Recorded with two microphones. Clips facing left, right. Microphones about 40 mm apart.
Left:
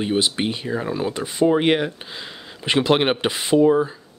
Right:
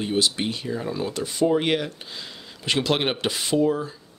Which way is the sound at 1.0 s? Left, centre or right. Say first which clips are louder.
Left 2 dB; left.